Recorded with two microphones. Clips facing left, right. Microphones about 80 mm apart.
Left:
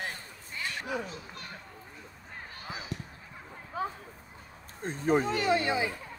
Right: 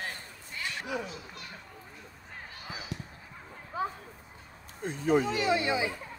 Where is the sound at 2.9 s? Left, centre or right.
Left.